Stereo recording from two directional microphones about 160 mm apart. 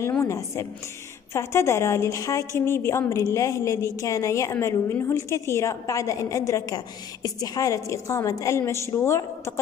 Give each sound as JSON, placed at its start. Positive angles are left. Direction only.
{"t": 0.0, "sound": "a woman's voice", "side_deg": 15}